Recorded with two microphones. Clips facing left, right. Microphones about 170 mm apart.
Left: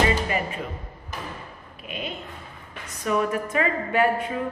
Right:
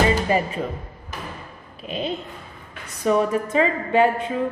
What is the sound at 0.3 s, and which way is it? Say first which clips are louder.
Music: right 6 dB; 35° right (ahead or behind).